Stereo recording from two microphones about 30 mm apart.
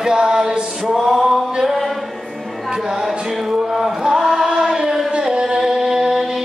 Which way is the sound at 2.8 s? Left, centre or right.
Centre.